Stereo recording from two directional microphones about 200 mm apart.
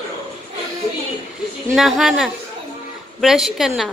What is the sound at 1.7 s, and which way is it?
A woman's voice, centre (ahead or behind).